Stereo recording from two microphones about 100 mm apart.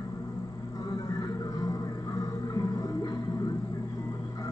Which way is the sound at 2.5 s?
35° left (ahead or behind).